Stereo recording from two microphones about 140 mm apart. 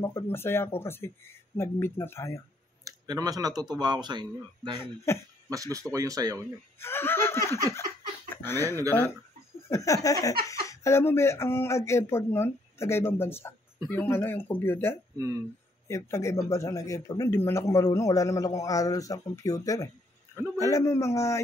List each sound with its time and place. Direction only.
0.0 s speech: 20° left (ahead or behind)
2.8 s speech: 25° right (ahead or behind)
4.7 s speech: 20° left (ahead or behind)
5.5 s speech: 25° right (ahead or behind)
6.8 s speech: 15° left (ahead or behind)
15.1 s speech: 20° right (ahead or behind)
15.9 s a man's voice: 20° left (ahead or behind)